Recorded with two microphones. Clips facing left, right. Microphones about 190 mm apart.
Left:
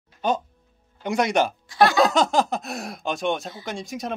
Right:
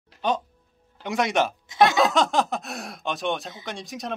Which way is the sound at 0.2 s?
Centre (ahead or behind).